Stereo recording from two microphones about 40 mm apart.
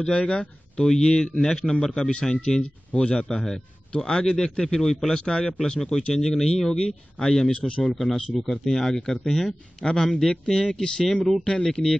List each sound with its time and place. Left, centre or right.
0.2 s speech: left
2.9 s speech: left
3.2 s speech: centre